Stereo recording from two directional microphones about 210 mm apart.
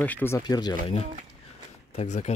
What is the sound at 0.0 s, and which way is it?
Speech, 10° left (ahead or behind).